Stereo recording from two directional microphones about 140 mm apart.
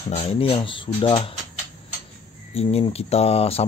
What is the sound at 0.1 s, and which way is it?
Speech, 45° left (ahead or behind).